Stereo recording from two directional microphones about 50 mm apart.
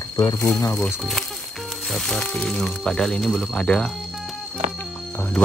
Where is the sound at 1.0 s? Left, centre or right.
Centre.